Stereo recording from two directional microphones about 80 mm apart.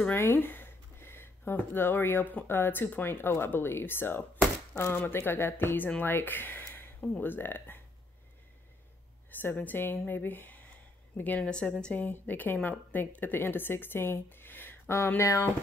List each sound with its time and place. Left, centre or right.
0.1 s speech: left
9.3 s a woman's voice: left